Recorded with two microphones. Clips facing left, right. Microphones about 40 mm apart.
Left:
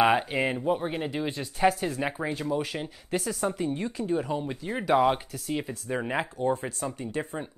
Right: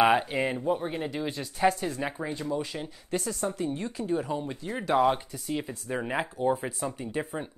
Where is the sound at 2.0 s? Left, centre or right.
Centre.